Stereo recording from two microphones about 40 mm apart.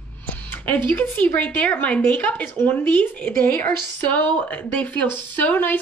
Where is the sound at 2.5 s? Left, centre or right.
Left.